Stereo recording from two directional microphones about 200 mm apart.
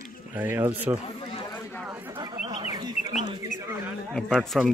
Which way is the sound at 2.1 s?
20° right (ahead or behind).